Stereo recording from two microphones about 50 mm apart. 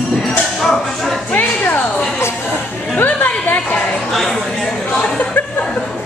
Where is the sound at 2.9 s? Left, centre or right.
Left.